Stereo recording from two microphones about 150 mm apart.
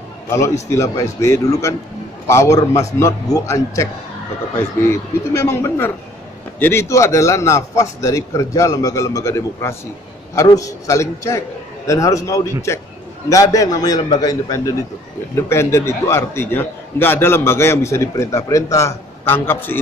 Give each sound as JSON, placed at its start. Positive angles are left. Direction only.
{"t": 0.3, "sound": "a man's voice", "side_deg": 20}